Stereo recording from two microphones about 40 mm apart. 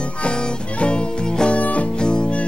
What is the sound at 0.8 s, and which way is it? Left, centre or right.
Music, left.